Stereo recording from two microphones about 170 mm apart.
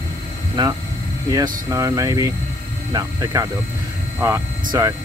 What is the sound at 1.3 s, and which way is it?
Speech, 20° right (ahead or behind).